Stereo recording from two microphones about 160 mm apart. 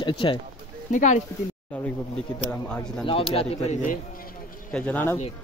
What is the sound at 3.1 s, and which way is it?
A man's voice, 35° left (ahead or behind).